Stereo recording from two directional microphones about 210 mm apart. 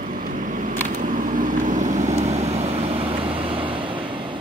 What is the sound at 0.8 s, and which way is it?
Vehicle, 40° right (ahead or behind).